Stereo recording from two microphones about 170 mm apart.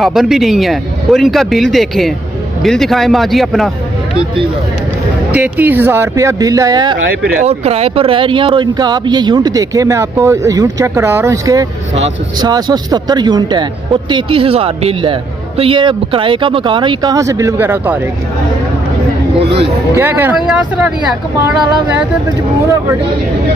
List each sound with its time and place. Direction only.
0.0 s speech: centre (ahead or behind)
5.3 s speech: 10° right (ahead or behind)
7.4 s speech: 40° right (ahead or behind); by 17.9 s 15° right (ahead or behind)
20.0 s speech: 10° right (ahead or behind)
22.6 s speech: 20° right (ahead or behind)